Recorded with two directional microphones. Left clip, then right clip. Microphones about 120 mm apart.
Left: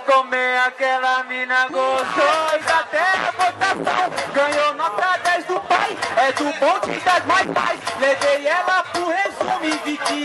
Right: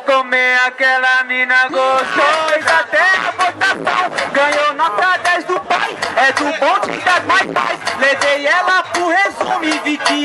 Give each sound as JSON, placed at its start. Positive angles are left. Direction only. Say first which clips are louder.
{"t": 0.1, "sound": "mantra", "louder": "right 4 dB", "side_deg": -15}
{"t": 2.1, "sound": "music", "louder": "right 4 dB", "side_deg": -20}
{"t": 4.6, "sound": "a sound", "louder": "right 5 dB", "side_deg": -25}
{"t": 5.7, "sound": "speech", "louder": "right 2 dB", "side_deg": -20}
{"t": 8.2, "sound": "mantra", "louder": "right 5 dB", "side_deg": -20}